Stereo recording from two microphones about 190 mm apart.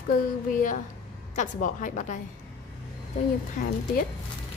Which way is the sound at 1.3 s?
40° left (ahead or behind).